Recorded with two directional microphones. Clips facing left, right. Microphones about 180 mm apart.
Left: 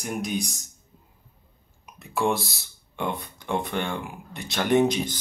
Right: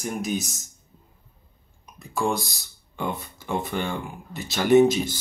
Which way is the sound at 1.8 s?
Centre (ahead or behind).